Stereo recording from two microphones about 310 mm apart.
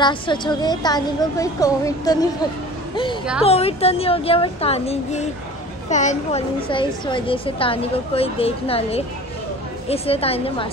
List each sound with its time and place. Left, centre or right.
0.0 s a woman's voice: centre
3.4 s a woman's voice: centre